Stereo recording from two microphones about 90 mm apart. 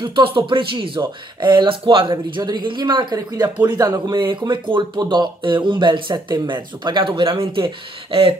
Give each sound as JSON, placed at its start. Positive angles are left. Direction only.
{"t": 0.0, "sound": "speech", "side_deg": -80}